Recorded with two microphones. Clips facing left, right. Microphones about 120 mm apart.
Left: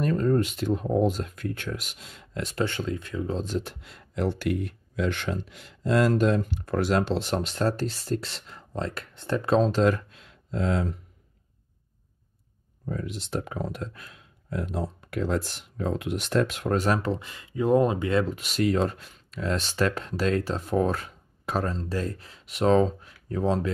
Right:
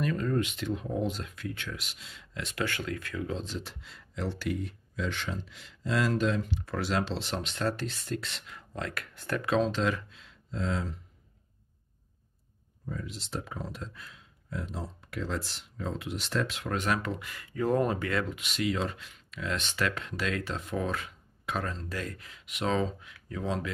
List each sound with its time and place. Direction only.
0.0 s speech: 40° left (ahead or behind)
2.5 s speech: 25° left (ahead or behind)
3.3 s speech: 45° left (ahead or behind)
12.8 s speech: 55° left (ahead or behind); by 18.2 s 20° left (ahead or behind)
18.2 s speech: 40° left (ahead or behind)